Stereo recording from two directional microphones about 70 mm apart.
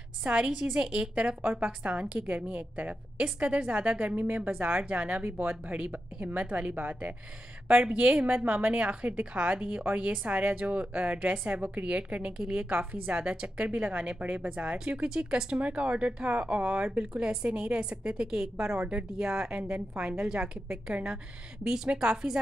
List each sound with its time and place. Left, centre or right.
0.2 s a woman's voice: centre
1.4 s a woman's voice: right; by 22.4 s centre